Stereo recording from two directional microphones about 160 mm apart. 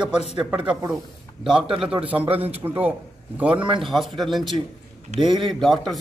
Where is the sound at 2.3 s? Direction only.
40° right (ahead or behind).